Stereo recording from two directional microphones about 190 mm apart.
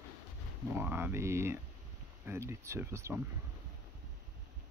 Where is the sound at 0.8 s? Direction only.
10° right (ahead or behind).